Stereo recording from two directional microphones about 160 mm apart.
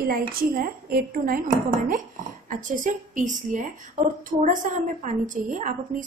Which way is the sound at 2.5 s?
55° right (ahead or behind).